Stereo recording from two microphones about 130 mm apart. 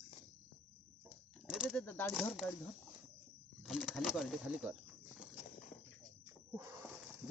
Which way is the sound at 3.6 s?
Centre (ahead or behind).